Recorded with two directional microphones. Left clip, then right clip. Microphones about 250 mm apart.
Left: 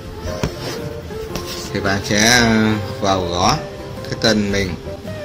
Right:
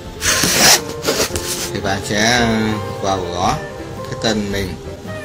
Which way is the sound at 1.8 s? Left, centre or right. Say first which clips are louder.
Left 1 dB; centre.